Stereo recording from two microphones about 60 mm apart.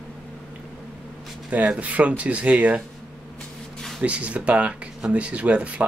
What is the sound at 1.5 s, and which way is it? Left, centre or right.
Speech, right.